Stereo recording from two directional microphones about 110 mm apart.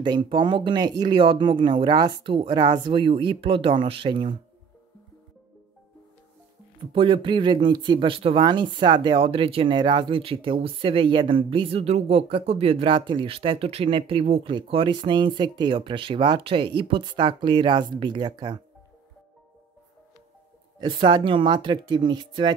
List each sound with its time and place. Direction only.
0.0 s speech: 45° right (ahead or behind)
6.9 s speech: 50° right (ahead or behind)
20.8 s speech: 45° right (ahead or behind)